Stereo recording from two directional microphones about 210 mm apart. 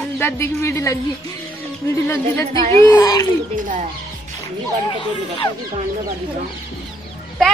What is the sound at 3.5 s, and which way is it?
Speech, 35° right (ahead or behind).